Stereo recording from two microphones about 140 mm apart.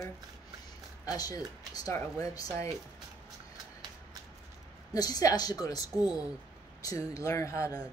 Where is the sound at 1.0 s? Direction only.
25° left (ahead or behind).